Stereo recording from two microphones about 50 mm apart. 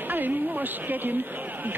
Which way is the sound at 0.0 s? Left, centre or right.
Right.